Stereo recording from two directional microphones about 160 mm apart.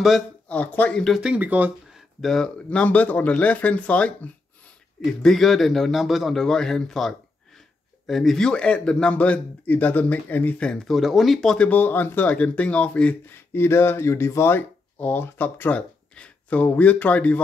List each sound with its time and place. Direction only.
0.0 s speech: 5° left (ahead or behind)
2.2 s a man's voice: 5° left (ahead or behind)